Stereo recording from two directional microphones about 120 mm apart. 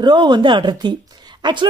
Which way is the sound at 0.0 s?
40° right (ahead or behind).